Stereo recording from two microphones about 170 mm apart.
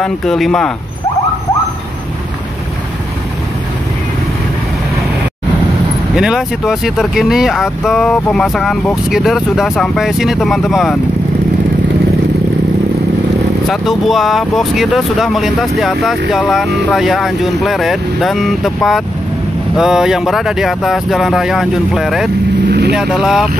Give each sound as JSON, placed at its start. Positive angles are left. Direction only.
{"t": 0.0, "sound": "speech", "side_deg": 5}
{"t": 6.1, "sound": "speech", "side_deg": -5}
{"t": 13.7, "sound": "speech", "side_deg": 0}
{"t": 22.7, "sound": "vehicle", "side_deg": -70}
{"t": 22.9, "sound": "speech", "side_deg": -5}